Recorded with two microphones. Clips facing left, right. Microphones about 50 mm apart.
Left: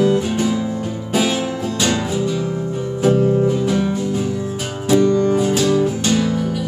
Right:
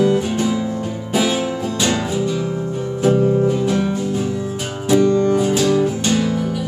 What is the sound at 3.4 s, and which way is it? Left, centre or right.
Music, centre.